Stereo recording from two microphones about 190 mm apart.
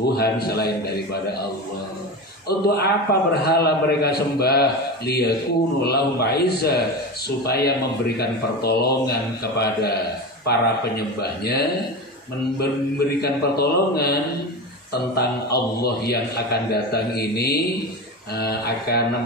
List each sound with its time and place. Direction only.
0.1 s a man's voice: 55° left (ahead or behind)
2.4 s a man's voice: 55° left (ahead or behind)
13.2 s a man's voice: 55° left (ahead or behind)